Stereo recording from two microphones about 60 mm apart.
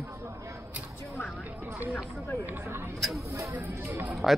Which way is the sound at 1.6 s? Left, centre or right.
Right.